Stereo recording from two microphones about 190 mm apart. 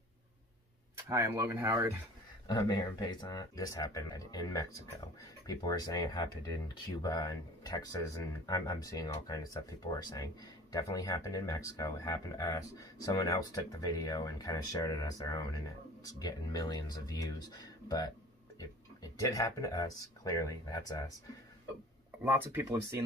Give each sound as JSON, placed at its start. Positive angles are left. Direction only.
{"t": 1.0, "sound": "speech", "side_deg": -15}
{"t": 2.4, "sound": "speech", "side_deg": 20}
{"t": 19.1, "sound": "speech", "side_deg": 20}
{"t": 22.2, "sound": "speech", "side_deg": -10}